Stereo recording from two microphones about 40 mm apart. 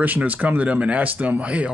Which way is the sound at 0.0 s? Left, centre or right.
Right.